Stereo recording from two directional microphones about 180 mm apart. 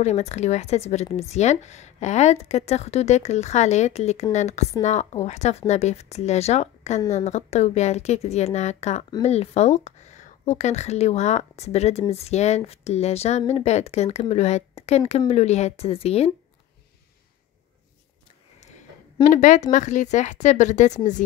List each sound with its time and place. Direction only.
0.0 s speech: 40° left (ahead or behind)
19.2 s speech: 45° left (ahead or behind)